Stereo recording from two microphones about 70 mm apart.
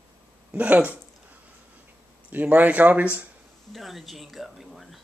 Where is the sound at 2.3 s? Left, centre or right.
Right.